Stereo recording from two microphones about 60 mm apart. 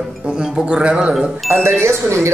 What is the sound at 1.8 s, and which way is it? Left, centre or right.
Speech, right.